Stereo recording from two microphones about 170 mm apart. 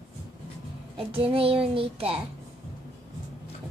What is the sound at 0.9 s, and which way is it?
Speech, 35° right (ahead or behind).